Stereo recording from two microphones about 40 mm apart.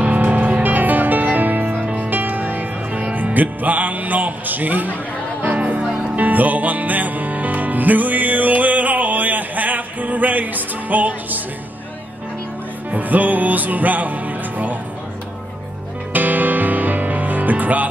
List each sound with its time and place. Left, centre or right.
0.0 s music: right
1.8 s music: right
2.0 s music: right
12.9 s music: right
16.1 s music: right